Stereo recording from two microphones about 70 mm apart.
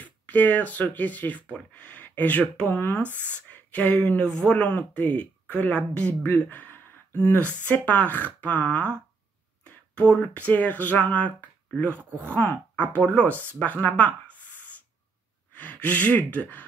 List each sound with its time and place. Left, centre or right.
0.0 s speech: left
4.6 s speech: left
12.0 s speech: right
12.7 s speech: centre